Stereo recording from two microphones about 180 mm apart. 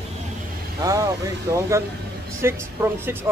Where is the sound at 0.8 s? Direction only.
20° right (ahead or behind).